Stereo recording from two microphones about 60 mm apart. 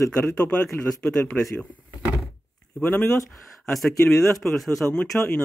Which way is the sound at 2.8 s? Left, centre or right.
Left.